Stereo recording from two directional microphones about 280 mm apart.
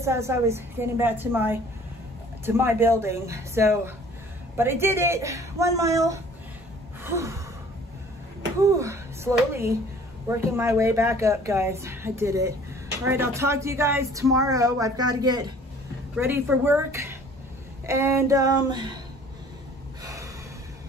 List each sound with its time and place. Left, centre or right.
0.0 s speech: centre
7.0 s gasp: centre
8.7 s speech: centre
20.0 s gasp: centre